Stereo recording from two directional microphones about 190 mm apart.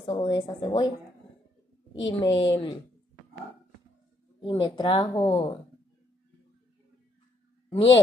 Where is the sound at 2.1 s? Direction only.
25° left (ahead or behind).